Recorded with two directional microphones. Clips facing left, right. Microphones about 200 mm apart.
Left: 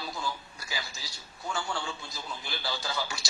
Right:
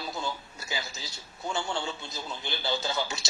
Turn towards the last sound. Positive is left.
turn(degrees=-25)  # may be behind; listen again after turning